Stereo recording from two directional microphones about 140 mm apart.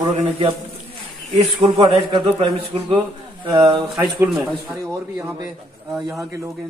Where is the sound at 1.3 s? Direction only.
35° right (ahead or behind).